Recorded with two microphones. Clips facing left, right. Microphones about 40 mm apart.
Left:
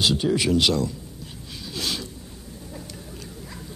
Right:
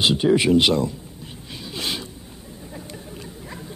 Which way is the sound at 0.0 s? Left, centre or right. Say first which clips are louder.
Right 4 dB; right.